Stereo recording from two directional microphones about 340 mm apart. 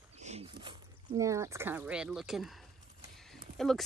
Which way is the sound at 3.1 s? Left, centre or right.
Centre.